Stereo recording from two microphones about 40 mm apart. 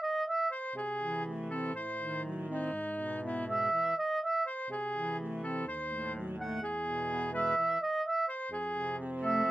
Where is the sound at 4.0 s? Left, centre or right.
Centre.